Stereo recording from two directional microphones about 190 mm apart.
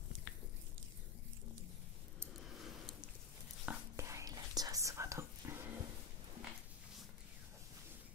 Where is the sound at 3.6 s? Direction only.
10° right (ahead or behind).